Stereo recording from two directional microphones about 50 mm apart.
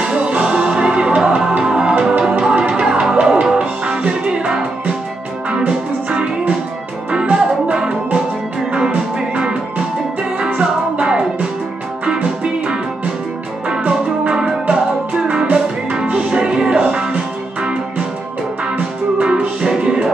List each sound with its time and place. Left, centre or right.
0.0 s music: right
7.1 s music: right
10.4 s music: right
19.2 s music: centre